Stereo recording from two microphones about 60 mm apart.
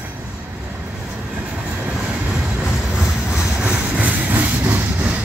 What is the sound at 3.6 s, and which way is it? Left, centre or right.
Vehicle, right.